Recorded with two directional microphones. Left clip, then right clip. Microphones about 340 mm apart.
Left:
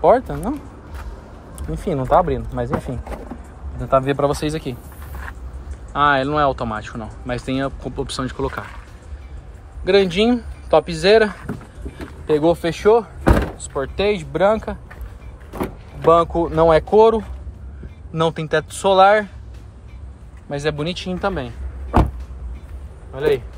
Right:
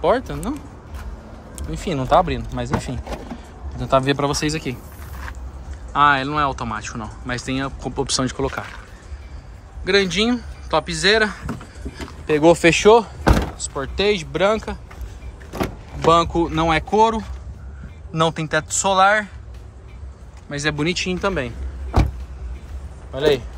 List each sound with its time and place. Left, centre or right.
0.0 s speech: centre
1.7 s speech: centre
5.9 s speech: centre
9.8 s speech: centre
16.0 s speech: centre
20.4 s speech: centre
23.1 s speech: centre